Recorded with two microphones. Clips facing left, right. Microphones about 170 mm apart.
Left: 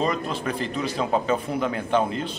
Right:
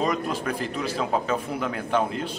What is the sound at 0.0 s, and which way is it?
A man's voice, 10° right (ahead or behind).